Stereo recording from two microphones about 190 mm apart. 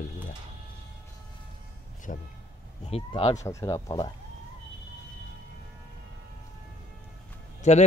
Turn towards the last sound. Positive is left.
turn(degrees=40)  # may be behind; listen again after turning